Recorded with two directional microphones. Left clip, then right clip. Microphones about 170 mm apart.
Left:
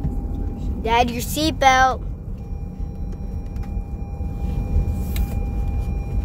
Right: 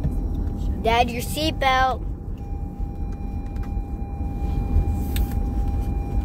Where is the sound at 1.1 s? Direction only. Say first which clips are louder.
Left 2 dB; 35° left (ahead or behind).